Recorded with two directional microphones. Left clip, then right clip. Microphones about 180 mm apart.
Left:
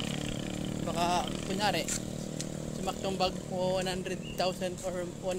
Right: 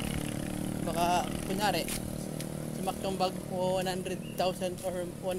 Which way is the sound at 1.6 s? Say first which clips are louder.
Even; 10° right (ahead or behind).